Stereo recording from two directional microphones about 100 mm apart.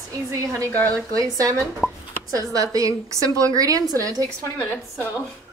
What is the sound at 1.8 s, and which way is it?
Speech, 5° right (ahead or behind).